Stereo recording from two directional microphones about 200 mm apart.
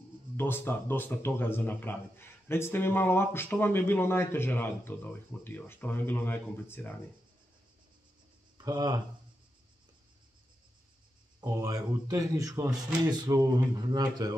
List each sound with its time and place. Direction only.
0.4 s speech: 10° left (ahead or behind)
8.5 s speech: 20° right (ahead or behind)
11.4 s speech: 20° right (ahead or behind)